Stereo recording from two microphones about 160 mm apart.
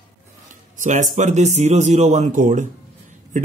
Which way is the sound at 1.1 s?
50° right (ahead or behind).